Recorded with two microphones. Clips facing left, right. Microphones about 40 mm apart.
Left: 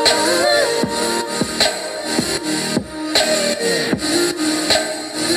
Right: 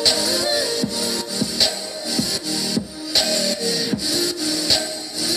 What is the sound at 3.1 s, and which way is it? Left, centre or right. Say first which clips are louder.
Music: left 4 dB; left.